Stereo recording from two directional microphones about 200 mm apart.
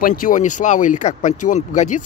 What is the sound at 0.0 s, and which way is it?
Speech, 45° left (ahead or behind).